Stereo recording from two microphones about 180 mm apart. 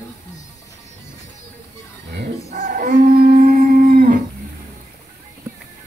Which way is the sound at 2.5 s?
50° right (ahead or behind).